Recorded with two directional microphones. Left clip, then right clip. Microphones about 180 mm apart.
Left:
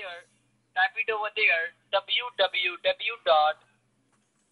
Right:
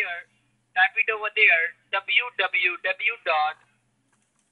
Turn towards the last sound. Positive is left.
turn(degrees=5)  # may be behind; listen again after turning